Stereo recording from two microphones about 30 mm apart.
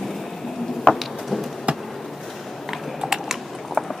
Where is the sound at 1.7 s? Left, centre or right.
Right.